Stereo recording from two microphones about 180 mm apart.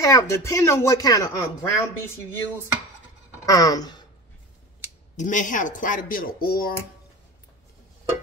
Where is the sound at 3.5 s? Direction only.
20° left (ahead or behind).